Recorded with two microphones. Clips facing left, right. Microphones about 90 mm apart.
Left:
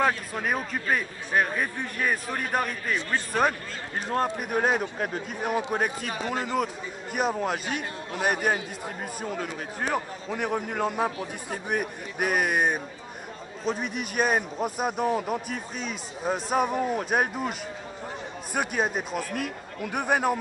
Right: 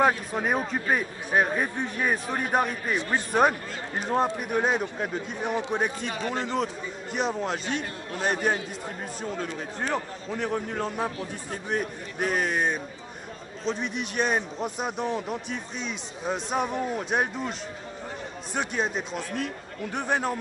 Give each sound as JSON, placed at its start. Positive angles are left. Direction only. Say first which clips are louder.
{"t": 0.4, "sound": "a man's voice", "louder": "right 2 dB", "side_deg": -25}
{"t": 4.0, "sound": "a man's voice", "louder": "right 2 dB", "side_deg": -5}